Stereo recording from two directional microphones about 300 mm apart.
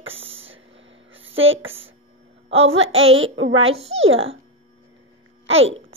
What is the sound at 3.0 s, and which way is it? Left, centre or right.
Speech, right.